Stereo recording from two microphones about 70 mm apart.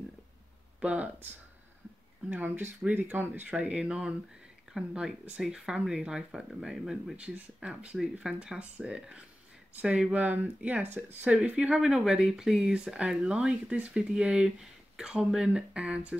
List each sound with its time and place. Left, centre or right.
0.7 s speech: centre
3.4 s speech: centre
7.2 s speech: centre